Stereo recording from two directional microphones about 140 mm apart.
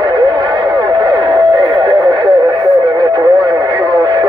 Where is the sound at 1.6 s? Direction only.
35° right (ahead or behind).